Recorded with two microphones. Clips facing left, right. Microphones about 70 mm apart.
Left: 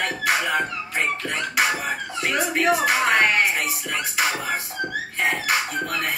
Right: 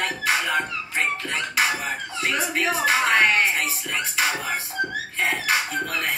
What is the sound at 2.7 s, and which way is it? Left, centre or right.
Music, centre.